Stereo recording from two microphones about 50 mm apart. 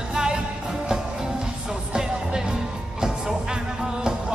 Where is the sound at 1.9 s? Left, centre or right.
Centre.